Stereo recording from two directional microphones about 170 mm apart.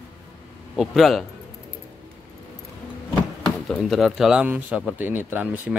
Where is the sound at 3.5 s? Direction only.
5° left (ahead or behind).